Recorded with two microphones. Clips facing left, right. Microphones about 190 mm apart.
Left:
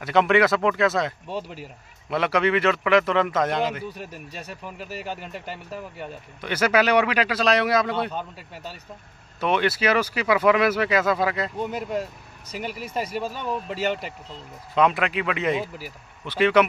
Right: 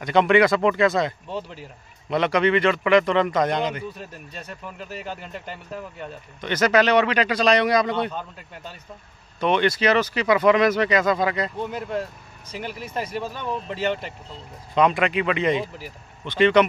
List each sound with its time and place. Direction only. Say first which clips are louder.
0.0 s speech: right 2 dB; centre (ahead or behind)